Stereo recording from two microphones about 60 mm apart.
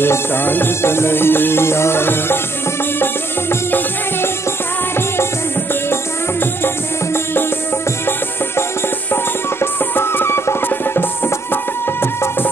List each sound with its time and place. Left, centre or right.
0.0 s music: left
9.1 s music: left